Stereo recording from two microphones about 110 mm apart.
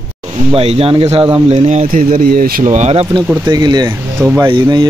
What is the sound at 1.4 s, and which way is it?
Speech, 85° right.